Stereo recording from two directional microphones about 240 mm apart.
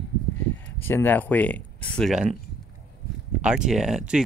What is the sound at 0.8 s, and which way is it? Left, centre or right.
Speech, centre.